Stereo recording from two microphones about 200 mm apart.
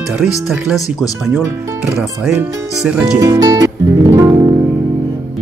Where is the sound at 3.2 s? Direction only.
15° right (ahead or behind).